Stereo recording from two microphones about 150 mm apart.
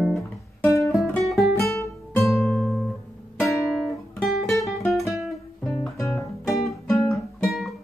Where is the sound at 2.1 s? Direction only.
Centre (ahead or behind).